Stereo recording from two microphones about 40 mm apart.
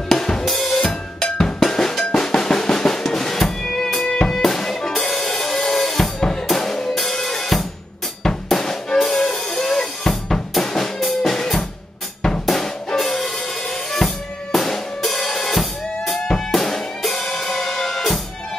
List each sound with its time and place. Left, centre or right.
0.1 s drum kit: centre
0.5 s drum kit: centre
0.8 s drum: centre
4.3 s drum kit: centre
8.2 s music: centre
12.2 s drum kit: centre
16.1 s music: centre